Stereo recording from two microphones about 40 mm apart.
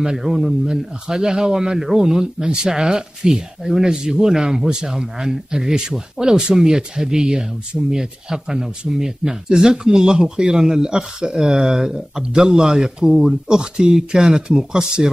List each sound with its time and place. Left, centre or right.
0.0 s speech: centre
13.6 s speech: centre